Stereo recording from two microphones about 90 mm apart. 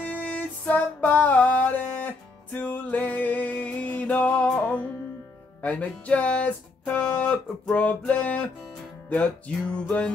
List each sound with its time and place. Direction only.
0.0 s music: 15° left (ahead or behind)
7.0 s a sound: 20° left (ahead or behind)
7.6 s music: 10° left (ahead or behind)